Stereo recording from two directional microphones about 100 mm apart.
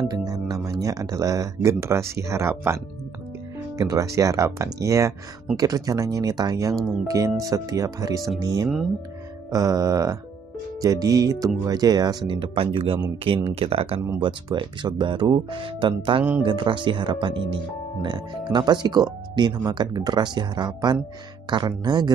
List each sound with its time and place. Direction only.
0.1 s speech: 40° right (ahead or behind); by 2.8 s 25° right (ahead or behind)
3.7 s speech: 35° right (ahead or behind)
12.4 s speech: 60° right (ahead or behind)
14.2 s speech: 55° right (ahead or behind)